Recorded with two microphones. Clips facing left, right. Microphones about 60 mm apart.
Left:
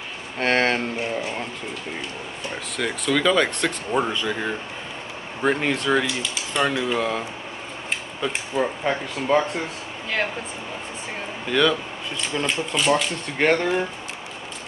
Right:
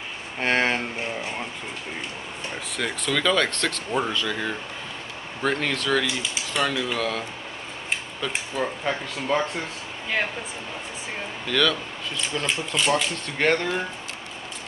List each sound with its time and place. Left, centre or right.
0.4 s speech: centre
2.5 s speech: centre; by 7.2 s left
8.5 s speech: centre
11.4 s speech: left
12.4 s speech: centre
13.4 s speech: centre